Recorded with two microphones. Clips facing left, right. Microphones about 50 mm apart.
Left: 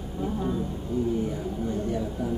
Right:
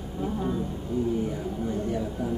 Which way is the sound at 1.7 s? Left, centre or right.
Centre.